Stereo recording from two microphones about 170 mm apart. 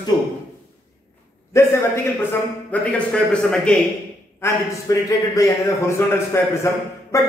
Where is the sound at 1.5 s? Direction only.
15° left (ahead or behind).